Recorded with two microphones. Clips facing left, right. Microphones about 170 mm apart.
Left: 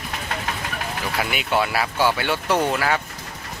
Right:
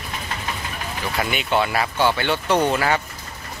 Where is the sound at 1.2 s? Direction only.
5° left (ahead or behind).